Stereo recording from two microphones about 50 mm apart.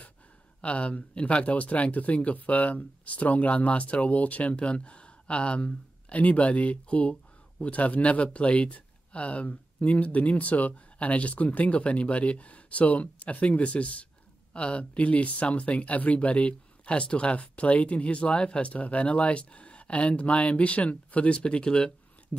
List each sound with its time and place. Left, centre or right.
0.6 s speech: left